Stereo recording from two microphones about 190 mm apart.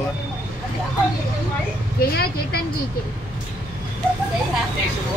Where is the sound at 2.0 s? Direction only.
55° left (ahead or behind).